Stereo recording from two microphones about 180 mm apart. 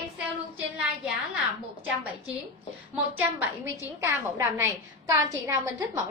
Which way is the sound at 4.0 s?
15° right (ahead or behind).